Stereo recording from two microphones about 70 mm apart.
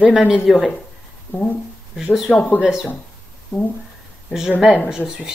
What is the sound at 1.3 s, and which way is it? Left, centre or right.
Speech, left.